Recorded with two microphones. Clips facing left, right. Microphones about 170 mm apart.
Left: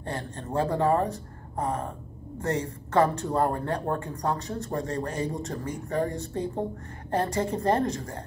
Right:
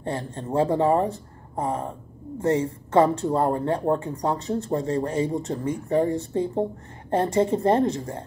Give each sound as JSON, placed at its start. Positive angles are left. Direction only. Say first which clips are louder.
{"t": 0.0, "sound": "speech", "louder": "right 5 dB", "side_deg": -20}